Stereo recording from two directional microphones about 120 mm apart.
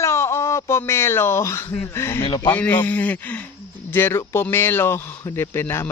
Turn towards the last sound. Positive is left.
turn(degrees=20)  # may be behind; listen again after turning